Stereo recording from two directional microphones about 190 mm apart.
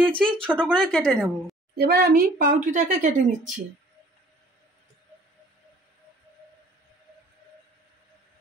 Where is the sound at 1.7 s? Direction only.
55° right (ahead or behind).